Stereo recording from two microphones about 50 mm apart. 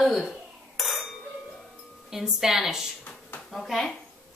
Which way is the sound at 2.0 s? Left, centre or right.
Centre.